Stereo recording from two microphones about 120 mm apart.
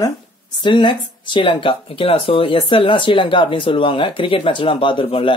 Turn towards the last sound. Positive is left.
turn(degrees=45)  # may be behind; listen again after turning